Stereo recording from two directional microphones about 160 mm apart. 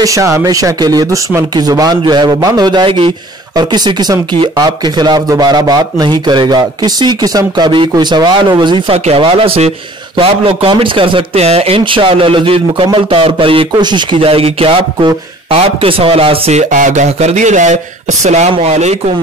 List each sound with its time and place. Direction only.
0.0 s a man's voice: 20° right (ahead or behind); by 16.6 s 40° right (ahead or behind)
16.7 s speech: 50° right (ahead or behind)